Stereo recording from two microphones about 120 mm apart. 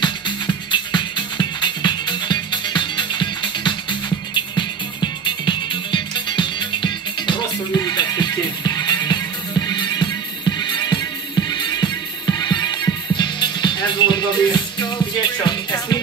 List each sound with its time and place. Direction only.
0.0 s music: 40° left (ahead or behind)